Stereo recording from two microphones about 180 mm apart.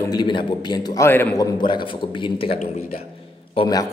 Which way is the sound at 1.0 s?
10° left (ahead or behind).